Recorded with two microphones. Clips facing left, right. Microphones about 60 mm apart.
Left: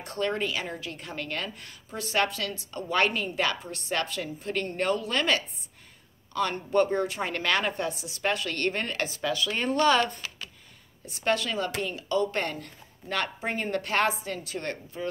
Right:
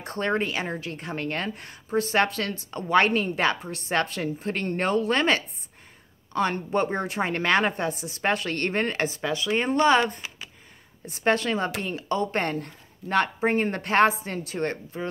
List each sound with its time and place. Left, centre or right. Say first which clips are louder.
0.0 s a woman's voice: right 3 dB; right
11.1 s a woman's voice: right 4 dB; right